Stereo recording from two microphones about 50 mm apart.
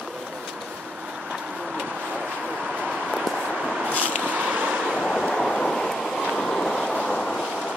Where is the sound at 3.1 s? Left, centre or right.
Centre.